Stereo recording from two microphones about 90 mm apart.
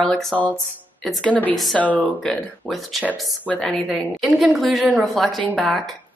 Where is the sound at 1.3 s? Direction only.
20° left (ahead or behind).